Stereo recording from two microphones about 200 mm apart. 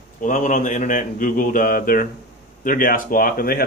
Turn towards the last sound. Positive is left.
turn(degrees=45)  # may be behind; listen again after turning